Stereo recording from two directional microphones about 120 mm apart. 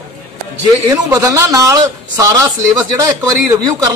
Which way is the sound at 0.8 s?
30° right (ahead or behind).